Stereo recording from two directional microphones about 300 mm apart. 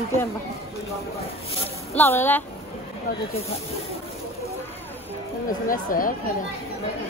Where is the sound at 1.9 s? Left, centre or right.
Centre.